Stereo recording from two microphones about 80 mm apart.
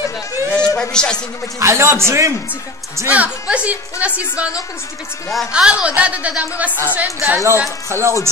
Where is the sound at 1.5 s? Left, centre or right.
Right.